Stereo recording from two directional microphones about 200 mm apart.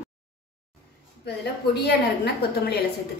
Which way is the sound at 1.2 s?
55° left (ahead or behind).